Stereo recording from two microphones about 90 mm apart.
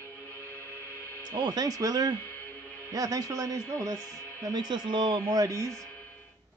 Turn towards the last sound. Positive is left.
turn(degrees=-40)  # may be behind; listen again after turning